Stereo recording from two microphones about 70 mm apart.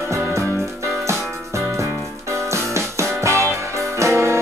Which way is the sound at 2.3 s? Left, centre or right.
Right.